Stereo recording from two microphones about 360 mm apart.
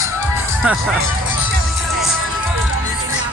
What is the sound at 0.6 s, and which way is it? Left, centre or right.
Speech, centre.